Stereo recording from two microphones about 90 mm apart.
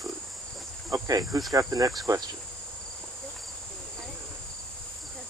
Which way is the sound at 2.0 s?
45° right (ahead or behind).